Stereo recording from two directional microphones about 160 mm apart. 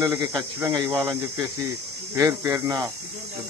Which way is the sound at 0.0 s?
20° right (ahead or behind).